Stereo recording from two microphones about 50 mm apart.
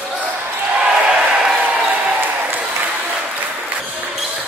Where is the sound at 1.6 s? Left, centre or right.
Right.